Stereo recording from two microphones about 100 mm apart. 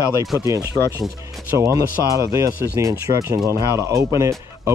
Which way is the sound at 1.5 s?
30° right (ahead or behind).